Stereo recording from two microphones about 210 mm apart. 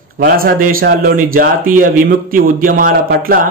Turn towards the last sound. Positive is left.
turn(degrees=-45)  # may be behind; listen again after turning